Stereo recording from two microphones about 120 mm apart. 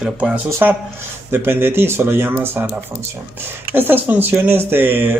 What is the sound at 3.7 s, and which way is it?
Speech, 15° right (ahead or behind).